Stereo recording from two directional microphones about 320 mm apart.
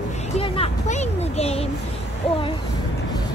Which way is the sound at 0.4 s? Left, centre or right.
Centre.